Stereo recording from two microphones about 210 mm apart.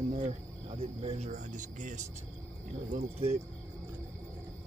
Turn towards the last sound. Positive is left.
turn(degrees=-30)  # may be behind; listen again after turning